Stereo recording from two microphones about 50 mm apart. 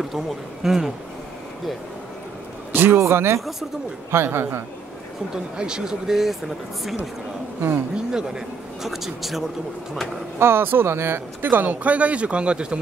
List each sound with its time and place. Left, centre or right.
0.7 s speech: centre
2.7 s speech: right
3.0 s a man's voice: right
5.3 s speech: centre
7.9 s speech: centre
8.8 s speech: centre
10.4 s speech: right; by 12.8 s centre